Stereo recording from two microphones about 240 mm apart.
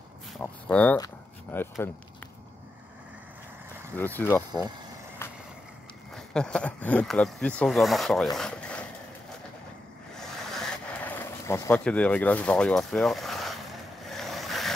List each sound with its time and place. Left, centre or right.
0.4 s speech: centre
3.9 s speech: centre
5.2 s vehicle: centre
6.1 s speech: centre
8.4 s a sound: centre
10.1 s a sound: centre
14.0 s vehicle: centre